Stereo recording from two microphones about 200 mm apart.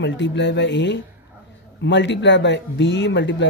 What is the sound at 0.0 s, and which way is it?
Speech, 60° left (ahead or behind).